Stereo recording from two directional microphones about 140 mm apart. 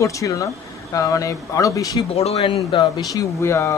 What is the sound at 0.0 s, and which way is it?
Speech, 25° left (ahead or behind).